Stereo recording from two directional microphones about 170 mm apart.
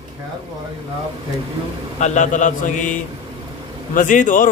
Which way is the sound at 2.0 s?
45° left (ahead or behind).